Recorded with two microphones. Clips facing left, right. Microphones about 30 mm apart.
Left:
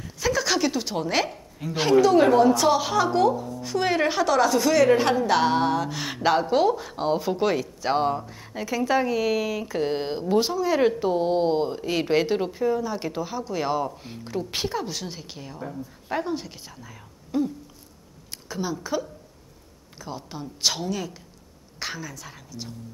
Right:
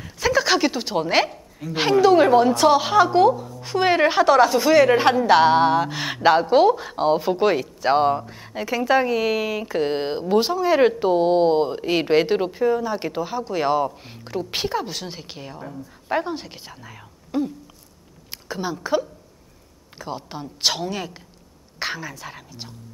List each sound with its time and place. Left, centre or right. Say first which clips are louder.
0.2 s a woman's voice: right 4 dB; right